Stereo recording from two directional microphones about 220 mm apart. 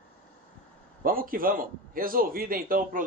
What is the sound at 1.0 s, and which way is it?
A man's voice, 40° right (ahead or behind).